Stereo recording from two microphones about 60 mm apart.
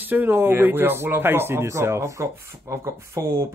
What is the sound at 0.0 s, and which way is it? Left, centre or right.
Speech, right.